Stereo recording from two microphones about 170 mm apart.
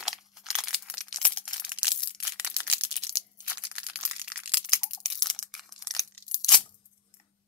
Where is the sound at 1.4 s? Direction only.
5° right (ahead or behind).